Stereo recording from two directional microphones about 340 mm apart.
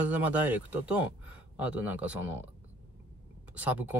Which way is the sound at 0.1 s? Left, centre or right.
Centre.